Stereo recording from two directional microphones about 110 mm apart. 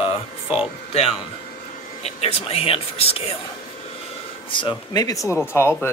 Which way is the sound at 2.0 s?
70° left (ahead or behind).